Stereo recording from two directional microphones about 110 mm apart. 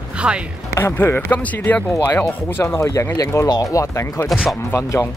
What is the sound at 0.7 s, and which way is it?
Speech, 20° left (ahead or behind).